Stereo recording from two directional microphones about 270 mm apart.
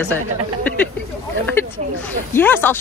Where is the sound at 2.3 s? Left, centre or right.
Centre.